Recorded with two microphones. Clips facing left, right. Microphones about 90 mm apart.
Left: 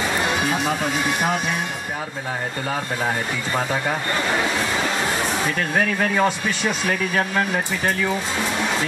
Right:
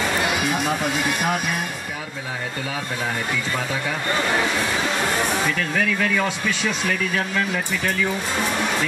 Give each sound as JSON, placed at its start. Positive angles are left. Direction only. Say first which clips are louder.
{"t": 0.4, "sound": "speech", "louder": "left 1 dB", "side_deg": 25}
{"t": 5.5, "sound": "speech", "louder": "left 1 dB", "side_deg": 40}